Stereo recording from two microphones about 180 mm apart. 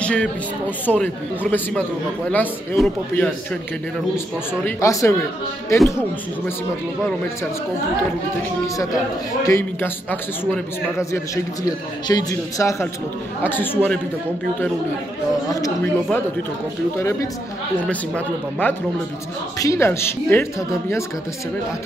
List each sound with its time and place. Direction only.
0.0 s a man's voice: 5° left (ahead or behind)
4.6 s a man's voice: 15° left (ahead or behind)
9.4 s a man's voice: 15° left (ahead or behind)
15.5 s a man's voice: 20° left (ahead or behind)
17.8 s a man's voice: 10° left (ahead or behind)